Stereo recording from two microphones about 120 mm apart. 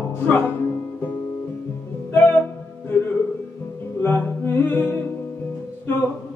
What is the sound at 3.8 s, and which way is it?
Music, 20° left (ahead or behind).